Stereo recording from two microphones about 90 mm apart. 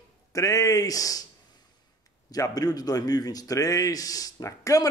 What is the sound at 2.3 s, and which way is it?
Speech, 45° left (ahead or behind).